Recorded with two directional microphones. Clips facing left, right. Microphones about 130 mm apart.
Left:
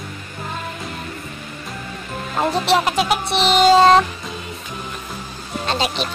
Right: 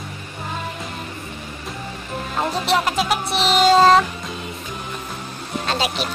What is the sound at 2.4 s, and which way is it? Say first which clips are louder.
Music: left 3 dB; centre (ahead or behind).